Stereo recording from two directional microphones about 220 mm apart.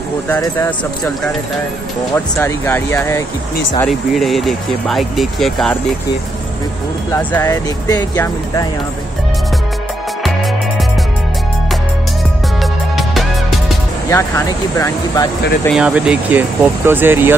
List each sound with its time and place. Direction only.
0.3 s speech: 10° left (ahead or behind)
3.8 s speech: centre (ahead or behind)
7.1 s speech: 10° left (ahead or behind)
12.9 s music: centre (ahead or behind)
14.0 s speech: 10° left (ahead or behind)
15.7 s speech: 5° right (ahead or behind)